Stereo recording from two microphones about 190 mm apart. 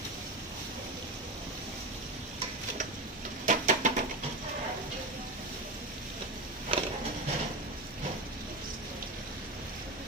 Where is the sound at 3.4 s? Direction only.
40° right (ahead or behind).